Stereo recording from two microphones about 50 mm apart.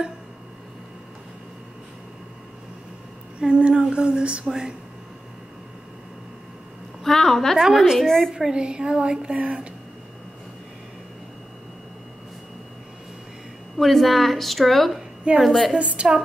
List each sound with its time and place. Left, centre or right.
3.3 s a woman's voice: right
7.0 s a woman's voice: centre
7.6 s a woman's voice: centre
8.0 s a woman's voice: centre
8.3 s a woman's voice: centre
13.7 s a woman's voice: centre
15.3 s speech: right